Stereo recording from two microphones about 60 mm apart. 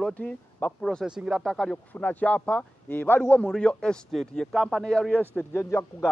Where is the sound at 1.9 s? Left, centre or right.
Left.